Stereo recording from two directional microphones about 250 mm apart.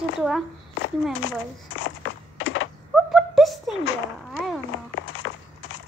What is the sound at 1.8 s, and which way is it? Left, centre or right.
Crushing, left.